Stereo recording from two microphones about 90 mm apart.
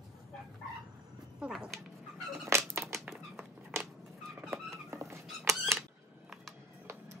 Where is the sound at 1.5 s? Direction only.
Centre (ahead or behind).